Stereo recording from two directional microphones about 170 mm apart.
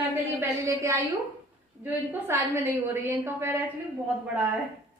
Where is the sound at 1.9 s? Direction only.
10° right (ahead or behind).